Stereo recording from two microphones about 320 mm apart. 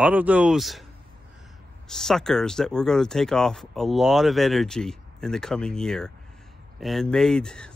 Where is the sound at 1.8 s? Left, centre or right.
Centre.